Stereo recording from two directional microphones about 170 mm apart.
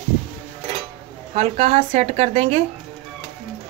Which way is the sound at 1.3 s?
35° right (ahead or behind).